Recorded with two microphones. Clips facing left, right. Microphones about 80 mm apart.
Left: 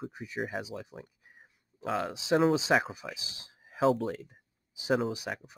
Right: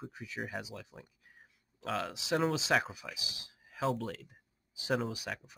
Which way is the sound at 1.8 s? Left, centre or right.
Centre.